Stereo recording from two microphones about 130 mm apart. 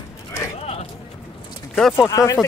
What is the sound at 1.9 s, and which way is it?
Speech, 25° left (ahead or behind).